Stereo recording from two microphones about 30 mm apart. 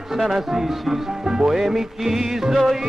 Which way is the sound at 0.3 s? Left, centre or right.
Centre.